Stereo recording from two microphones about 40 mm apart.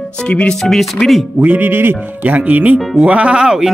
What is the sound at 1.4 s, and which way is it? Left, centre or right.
Speech, right.